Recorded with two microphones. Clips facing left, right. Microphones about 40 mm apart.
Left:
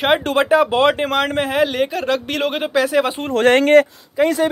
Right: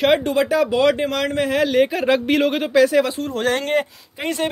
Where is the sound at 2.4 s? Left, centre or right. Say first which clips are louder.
Right 2 dB; centre.